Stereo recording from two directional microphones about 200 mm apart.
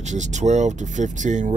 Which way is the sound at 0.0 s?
35° right (ahead or behind).